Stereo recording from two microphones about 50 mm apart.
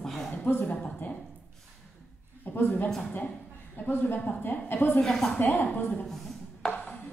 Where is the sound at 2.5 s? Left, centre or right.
Left.